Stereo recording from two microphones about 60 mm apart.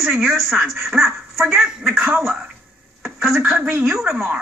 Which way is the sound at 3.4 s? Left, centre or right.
Right.